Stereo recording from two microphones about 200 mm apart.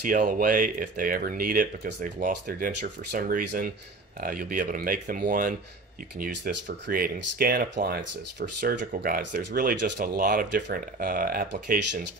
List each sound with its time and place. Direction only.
0.0 s speech: 45° right (ahead or behind)